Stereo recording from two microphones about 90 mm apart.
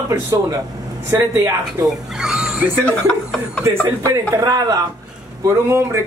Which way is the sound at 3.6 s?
35° right (ahead or behind).